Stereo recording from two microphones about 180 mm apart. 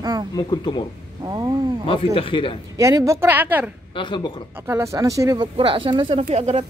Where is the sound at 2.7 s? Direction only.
15° right (ahead or behind).